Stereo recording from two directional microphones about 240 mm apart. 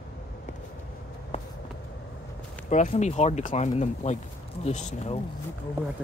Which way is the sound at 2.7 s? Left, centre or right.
Left.